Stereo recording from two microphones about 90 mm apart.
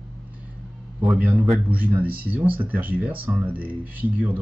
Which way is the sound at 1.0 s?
10° right (ahead or behind).